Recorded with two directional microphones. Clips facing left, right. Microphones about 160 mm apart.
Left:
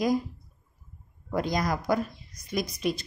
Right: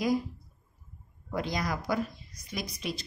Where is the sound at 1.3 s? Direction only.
45° left (ahead or behind).